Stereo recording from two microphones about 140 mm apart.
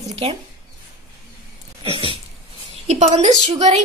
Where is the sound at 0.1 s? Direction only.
50° right (ahead or behind).